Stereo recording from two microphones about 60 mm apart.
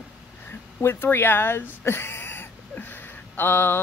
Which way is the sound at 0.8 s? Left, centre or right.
Left.